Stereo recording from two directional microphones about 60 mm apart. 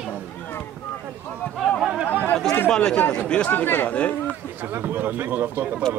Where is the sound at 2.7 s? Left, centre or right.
Centre.